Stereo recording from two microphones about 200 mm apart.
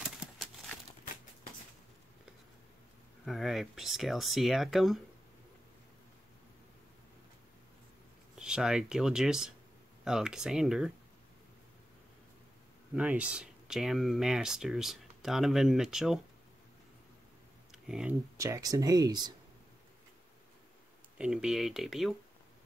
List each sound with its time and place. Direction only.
0.2 s a sound: 5° right (ahead or behind)
3.3 s speech: centre (ahead or behind)
8.4 s speech: 5° right (ahead or behind)
12.9 s speech: 5° right (ahead or behind)
17.6 s a sound: 5° right (ahead or behind)
18.4 s speech: 15° right (ahead or behind)
21.2 s speech: 5° right (ahead or behind)